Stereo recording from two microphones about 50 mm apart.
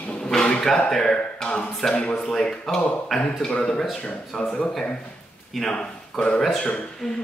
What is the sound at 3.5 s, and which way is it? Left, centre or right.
Speech, centre.